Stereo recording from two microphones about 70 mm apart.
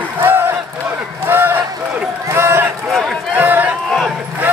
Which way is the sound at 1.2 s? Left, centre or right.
Right.